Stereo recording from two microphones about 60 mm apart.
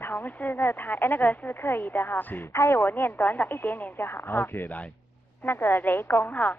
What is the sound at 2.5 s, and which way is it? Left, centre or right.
Speech, left.